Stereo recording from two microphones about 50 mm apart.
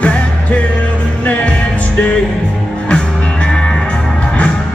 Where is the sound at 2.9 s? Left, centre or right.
Centre.